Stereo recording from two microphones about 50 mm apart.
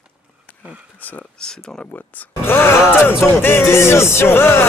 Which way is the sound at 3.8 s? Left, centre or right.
Left.